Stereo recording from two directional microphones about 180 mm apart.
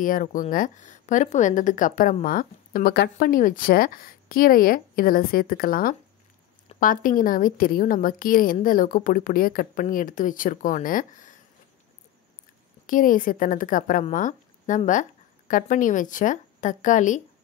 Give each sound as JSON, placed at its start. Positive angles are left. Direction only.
{"t": 0.0, "sound": "a woman's voice", "side_deg": 50}
{"t": 12.8, "sound": "a woman's voice", "side_deg": 50}